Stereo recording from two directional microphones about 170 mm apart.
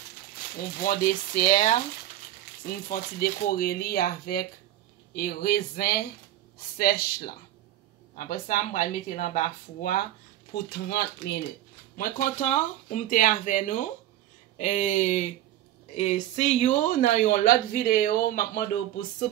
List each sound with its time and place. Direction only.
0.8 s speech: 55° left (ahead or behind)
10.5 s speech: 70° left (ahead or behind)
12.0 s speech: 50° left (ahead or behind)